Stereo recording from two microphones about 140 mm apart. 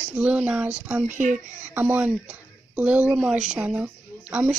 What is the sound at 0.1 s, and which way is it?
Speech, 10° right (ahead or behind).